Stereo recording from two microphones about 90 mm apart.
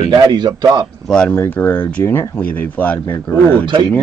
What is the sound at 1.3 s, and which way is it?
Speech, 20° left (ahead or behind).